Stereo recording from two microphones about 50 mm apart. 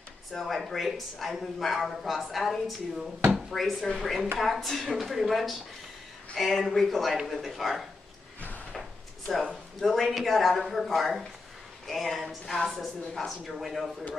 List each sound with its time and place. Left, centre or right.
0.3 s speech: centre
9.3 s speech: centre